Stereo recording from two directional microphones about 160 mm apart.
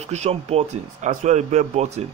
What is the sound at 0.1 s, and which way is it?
Speech, 40° right (ahead or behind).